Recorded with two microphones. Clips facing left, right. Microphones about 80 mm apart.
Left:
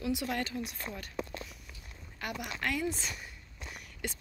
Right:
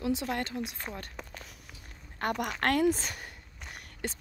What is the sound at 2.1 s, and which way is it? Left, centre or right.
Speech, right.